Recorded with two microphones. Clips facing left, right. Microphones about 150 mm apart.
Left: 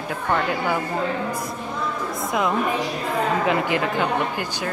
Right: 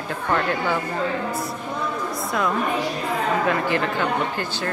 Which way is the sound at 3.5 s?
15° left (ahead or behind).